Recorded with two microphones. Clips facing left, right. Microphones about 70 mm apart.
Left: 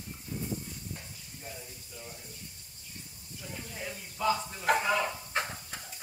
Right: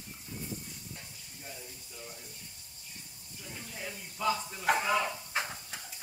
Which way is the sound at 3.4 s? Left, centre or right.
Centre.